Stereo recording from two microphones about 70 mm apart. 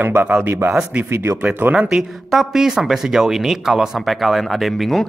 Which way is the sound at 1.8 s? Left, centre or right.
Centre.